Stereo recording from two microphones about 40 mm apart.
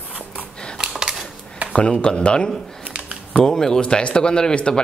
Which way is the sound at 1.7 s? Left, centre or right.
Left.